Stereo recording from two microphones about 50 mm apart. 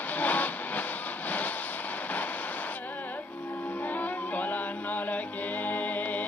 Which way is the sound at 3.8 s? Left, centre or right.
Left.